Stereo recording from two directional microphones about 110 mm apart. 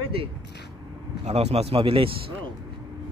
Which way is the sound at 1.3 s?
85° right.